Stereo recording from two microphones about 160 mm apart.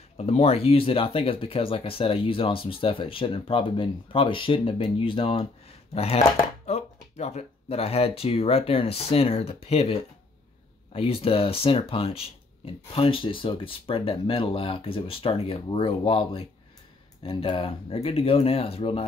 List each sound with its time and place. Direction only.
0.2 s speech: 40° left (ahead or behind)